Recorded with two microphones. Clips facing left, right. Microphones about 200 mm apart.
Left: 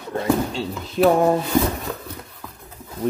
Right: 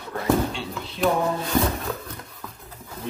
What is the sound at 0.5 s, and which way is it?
Speech, 45° left (ahead or behind).